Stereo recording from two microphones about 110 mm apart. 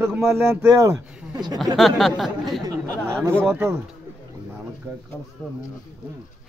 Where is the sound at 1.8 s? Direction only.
Centre (ahead or behind).